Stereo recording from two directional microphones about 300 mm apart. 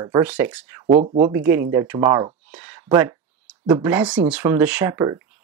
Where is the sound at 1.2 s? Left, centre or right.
Centre.